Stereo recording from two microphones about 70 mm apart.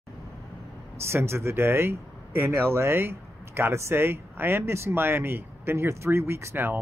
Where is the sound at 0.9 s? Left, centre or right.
Right.